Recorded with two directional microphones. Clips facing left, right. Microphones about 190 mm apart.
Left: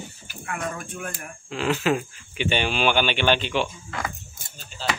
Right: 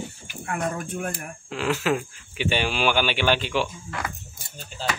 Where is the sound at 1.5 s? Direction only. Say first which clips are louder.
Left 1 dB; 5° right (ahead or behind).